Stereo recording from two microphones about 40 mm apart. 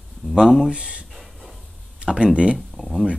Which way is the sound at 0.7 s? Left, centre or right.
Right.